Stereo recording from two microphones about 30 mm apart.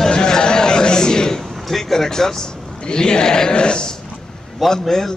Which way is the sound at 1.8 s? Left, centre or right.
Centre.